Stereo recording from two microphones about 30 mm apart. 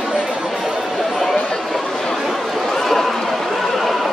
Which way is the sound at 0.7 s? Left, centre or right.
Centre.